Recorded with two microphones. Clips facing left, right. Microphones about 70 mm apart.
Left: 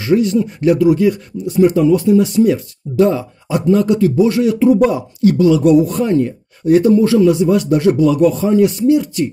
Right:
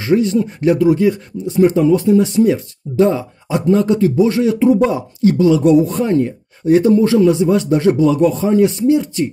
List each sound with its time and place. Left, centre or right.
0.0 s a man's voice: right